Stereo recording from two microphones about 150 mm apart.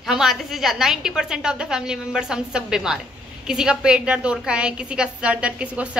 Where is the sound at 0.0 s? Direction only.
Centre (ahead or behind).